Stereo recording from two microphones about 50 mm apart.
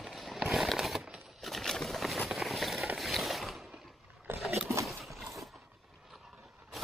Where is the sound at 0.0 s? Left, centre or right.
Centre.